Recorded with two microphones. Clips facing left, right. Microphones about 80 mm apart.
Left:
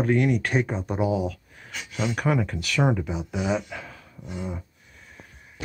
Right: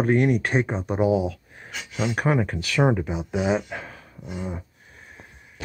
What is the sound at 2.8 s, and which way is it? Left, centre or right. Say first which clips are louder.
Speech: right 3 dB; right.